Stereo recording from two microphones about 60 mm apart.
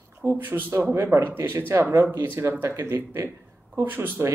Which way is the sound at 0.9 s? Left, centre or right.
Right.